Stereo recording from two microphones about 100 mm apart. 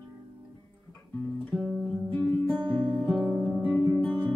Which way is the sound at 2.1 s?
15° left (ahead or behind).